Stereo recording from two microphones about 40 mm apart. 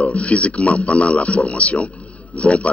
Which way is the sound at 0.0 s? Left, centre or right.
Left.